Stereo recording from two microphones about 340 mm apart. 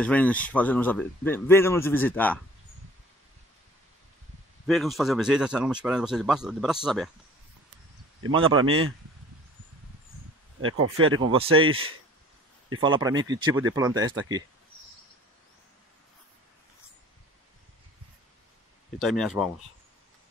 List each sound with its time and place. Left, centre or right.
0.0 s a man's voice: centre
4.6 s a man's voice: centre
8.5 s speech: right
10.6 s speech: right
12.8 s speech: centre
18.9 s a man's voice: centre